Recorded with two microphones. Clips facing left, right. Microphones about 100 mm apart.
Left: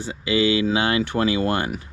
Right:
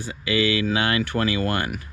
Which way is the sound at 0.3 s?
20° left (ahead or behind).